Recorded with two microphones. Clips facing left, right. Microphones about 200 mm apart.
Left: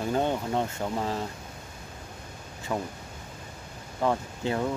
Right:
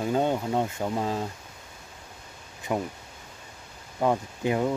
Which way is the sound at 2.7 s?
15° right (ahead or behind).